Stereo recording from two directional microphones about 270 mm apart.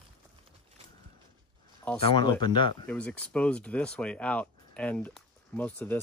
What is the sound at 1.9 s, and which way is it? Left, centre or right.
Speech, centre.